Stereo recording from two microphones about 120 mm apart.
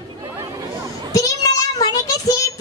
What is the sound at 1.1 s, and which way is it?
Child singing, 30° left (ahead or behind).